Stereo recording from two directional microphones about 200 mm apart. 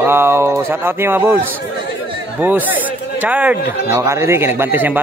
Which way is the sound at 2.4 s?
10° right (ahead or behind).